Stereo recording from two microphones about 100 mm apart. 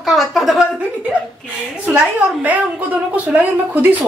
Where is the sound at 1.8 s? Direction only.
15° right (ahead or behind).